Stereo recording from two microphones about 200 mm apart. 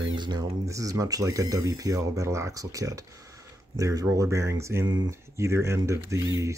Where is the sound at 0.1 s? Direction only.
20° right (ahead or behind).